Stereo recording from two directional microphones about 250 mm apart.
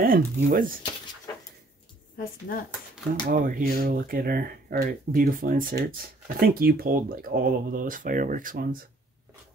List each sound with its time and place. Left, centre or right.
0.0 s speech: right
2.1 s speech: left
3.3 s speech: right